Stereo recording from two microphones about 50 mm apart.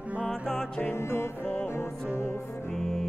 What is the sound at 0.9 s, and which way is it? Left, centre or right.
Music, left.